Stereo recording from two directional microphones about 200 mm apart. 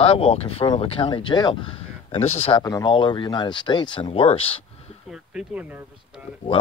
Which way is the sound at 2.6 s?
20° left (ahead or behind).